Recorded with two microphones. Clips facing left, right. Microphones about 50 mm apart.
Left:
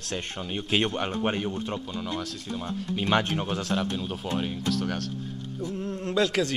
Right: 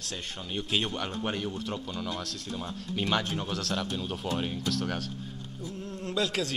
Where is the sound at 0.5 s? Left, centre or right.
Left.